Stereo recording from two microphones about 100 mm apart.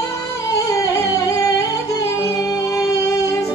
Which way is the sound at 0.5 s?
35° left (ahead or behind).